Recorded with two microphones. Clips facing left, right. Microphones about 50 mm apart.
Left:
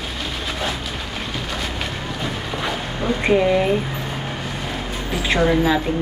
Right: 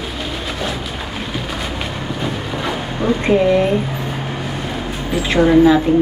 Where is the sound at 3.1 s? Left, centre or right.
Centre.